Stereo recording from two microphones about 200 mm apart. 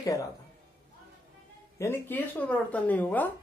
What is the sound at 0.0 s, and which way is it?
Speech, 15° left (ahead or behind).